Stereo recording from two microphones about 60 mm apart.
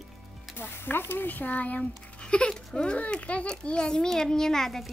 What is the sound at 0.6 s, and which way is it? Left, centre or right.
A child's voice, left.